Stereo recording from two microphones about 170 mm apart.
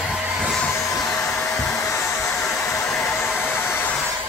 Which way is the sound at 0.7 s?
20° left (ahead or behind).